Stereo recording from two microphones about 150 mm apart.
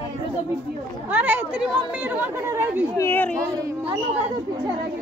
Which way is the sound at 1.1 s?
10° right (ahead or behind).